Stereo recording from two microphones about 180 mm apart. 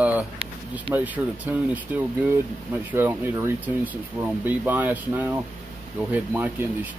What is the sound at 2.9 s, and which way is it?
Speech, 10° right (ahead or behind).